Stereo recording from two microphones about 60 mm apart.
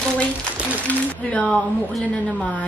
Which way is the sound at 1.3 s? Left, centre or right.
Centre.